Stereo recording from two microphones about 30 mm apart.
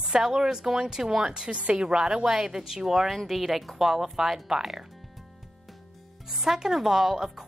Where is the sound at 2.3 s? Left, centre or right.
Centre.